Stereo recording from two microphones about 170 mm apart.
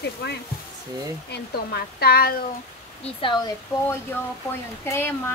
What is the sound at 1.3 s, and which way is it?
A woman's voice, 65° left (ahead or behind).